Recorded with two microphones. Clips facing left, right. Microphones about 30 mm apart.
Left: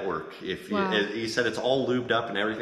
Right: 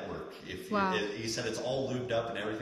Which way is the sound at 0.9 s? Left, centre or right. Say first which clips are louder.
Left 7 dB; left.